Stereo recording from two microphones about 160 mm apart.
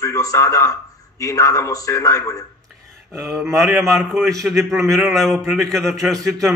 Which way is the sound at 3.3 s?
Centre (ahead or behind).